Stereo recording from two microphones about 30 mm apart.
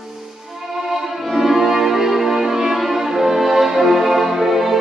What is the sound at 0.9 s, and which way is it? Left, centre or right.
Music, centre.